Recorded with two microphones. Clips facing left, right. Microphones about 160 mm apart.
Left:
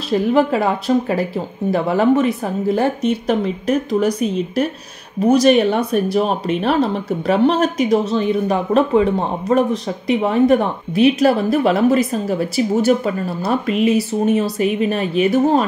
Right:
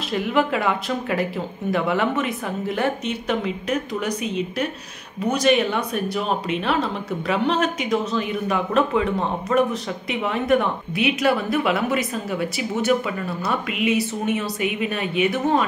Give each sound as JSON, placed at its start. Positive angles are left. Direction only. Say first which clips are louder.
{"t": 0.1, "sound": "speech", "louder": "left 6 dB", "side_deg": 35}